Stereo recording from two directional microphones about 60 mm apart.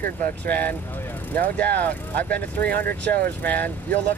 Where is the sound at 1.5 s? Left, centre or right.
Left.